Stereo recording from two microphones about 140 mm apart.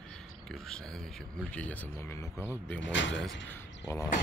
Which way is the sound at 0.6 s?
5° left (ahead or behind).